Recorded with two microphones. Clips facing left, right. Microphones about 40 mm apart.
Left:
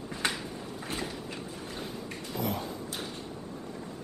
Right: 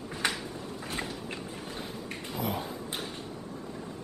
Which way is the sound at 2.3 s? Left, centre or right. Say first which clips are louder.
Even; centre.